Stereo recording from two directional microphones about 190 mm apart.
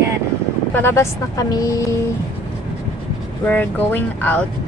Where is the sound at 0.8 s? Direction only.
15° left (ahead or behind).